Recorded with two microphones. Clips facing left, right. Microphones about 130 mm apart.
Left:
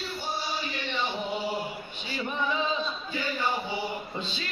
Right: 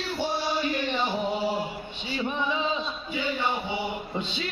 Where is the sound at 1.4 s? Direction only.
25° right (ahead or behind).